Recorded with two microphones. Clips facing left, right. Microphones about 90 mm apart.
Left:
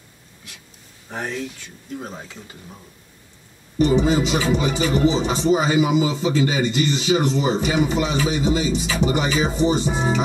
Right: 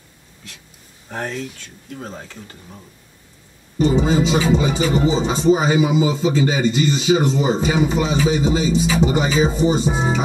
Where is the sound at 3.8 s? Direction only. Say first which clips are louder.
Right 1 dB; 25° right (ahead or behind).